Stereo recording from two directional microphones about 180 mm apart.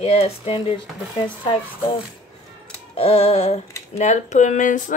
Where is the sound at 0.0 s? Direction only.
35° left (ahead or behind).